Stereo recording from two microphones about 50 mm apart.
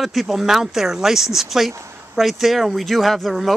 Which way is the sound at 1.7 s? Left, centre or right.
Right.